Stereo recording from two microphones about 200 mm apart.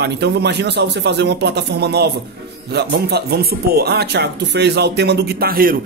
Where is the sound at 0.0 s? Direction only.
55° right (ahead or behind).